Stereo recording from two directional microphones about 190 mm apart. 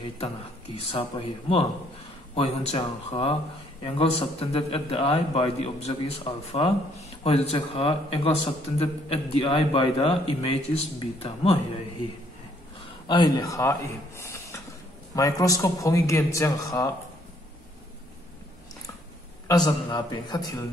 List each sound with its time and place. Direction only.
0.7 s a man's voice: 30° left (ahead or behind)
13.1 s a man's voice: 20° left (ahead or behind)
19.4 s a man's voice: 20° left (ahead or behind)